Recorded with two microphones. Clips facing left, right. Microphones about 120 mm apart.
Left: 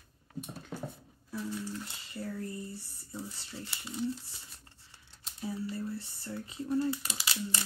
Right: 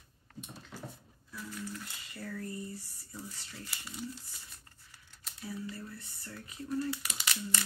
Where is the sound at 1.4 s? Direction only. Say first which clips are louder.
Left 2 dB; 25° left (ahead or behind).